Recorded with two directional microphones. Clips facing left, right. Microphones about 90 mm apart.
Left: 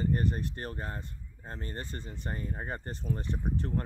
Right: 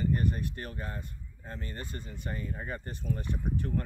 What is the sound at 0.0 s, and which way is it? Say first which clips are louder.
Speech: even; 30° left (ahead or behind).